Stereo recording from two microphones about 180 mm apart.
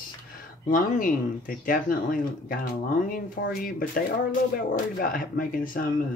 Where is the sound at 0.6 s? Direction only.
50° left (ahead or behind).